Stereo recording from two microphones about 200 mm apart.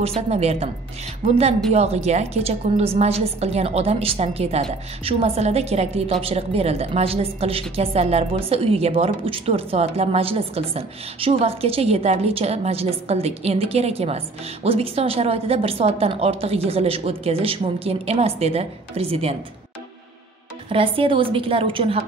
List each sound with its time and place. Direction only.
0.0 s a woman's voice: 30° right (ahead or behind)
1.7 s a woman's voice: 30° right (ahead or behind)
20.7 s a woman's voice: 25° right (ahead or behind)